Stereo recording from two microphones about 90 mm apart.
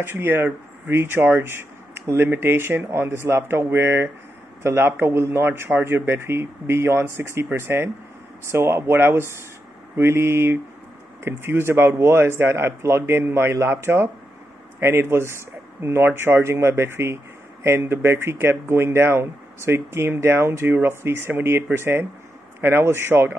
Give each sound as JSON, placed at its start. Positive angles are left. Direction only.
{"t": 0.0, "sound": "speech", "side_deg": -25}